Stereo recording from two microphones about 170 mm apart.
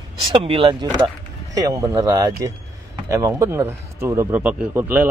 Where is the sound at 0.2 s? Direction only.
30° right (ahead or behind).